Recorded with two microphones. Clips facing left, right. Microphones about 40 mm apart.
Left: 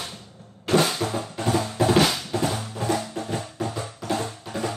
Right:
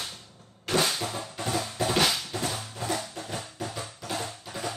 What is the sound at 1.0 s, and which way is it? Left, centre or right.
Drum, centre.